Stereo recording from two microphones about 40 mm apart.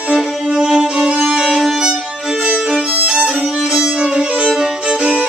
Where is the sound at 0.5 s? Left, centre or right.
Centre.